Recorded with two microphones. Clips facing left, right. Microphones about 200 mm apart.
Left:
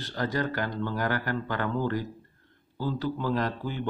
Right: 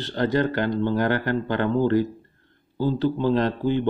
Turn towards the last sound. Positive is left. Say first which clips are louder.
# right 8 dB
turn(degrees=-25)  # may be behind; listen again after turning